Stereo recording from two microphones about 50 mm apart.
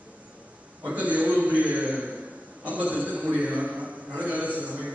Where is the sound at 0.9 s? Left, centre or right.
Right.